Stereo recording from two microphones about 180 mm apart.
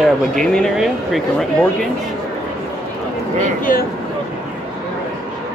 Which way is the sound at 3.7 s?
50° left (ahead or behind).